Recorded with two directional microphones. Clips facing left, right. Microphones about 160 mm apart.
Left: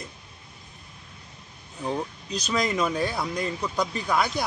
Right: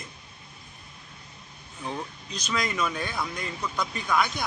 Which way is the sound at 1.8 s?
35° left (ahead or behind).